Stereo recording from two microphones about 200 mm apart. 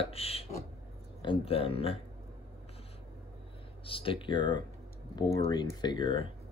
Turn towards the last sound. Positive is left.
turn(degrees=25)  # may be behind; listen again after turning